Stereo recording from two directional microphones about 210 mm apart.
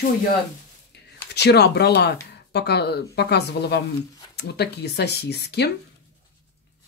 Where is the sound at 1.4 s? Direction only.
50° left (ahead or behind).